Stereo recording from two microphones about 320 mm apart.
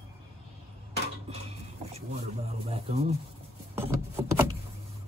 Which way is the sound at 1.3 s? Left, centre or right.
Centre.